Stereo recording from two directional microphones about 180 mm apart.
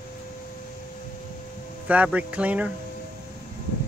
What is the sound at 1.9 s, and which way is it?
Speech, 10° right (ahead or behind).